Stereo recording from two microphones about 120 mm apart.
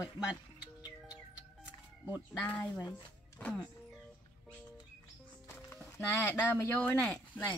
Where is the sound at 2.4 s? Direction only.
15° left (ahead or behind).